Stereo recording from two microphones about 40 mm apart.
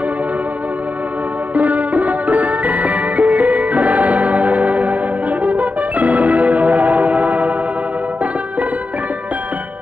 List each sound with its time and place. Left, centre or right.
1.5 s music: right